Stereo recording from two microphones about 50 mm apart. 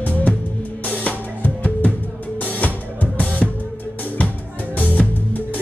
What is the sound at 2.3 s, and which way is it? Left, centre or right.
Music, left.